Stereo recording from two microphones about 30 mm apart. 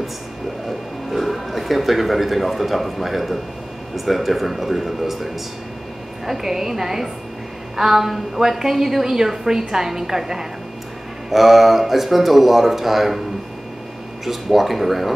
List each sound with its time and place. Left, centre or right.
0.7 s a woman's voice: centre
14.2 s speech: centre